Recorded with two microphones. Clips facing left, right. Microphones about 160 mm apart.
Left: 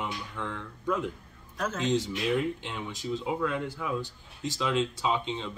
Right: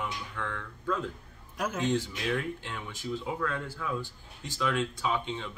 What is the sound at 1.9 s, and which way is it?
Speech, 20° left (ahead or behind).